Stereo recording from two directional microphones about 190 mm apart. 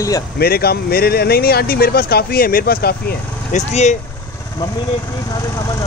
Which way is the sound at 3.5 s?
40° left (ahead or behind).